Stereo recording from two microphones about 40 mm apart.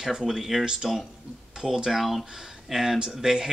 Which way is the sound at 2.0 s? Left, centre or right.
Centre.